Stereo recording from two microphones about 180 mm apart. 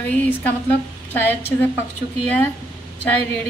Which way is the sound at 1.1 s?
10° left (ahead or behind).